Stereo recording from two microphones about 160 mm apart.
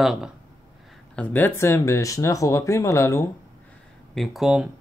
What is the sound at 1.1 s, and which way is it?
Speech, 10° left (ahead or behind).